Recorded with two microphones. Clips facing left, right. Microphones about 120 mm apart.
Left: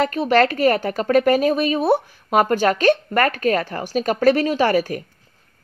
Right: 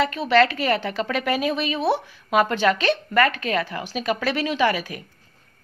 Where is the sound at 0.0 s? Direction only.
45° left (ahead or behind).